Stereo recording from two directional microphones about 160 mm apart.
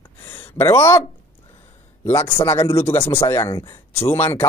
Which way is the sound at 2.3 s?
15° left (ahead or behind).